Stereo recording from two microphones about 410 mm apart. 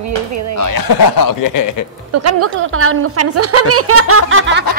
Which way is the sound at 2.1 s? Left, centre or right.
Right.